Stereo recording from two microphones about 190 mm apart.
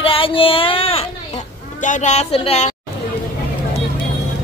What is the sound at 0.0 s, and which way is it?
Child singing, 30° left (ahead or behind).